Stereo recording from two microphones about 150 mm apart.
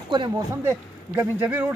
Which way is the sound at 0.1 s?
30° right (ahead or behind).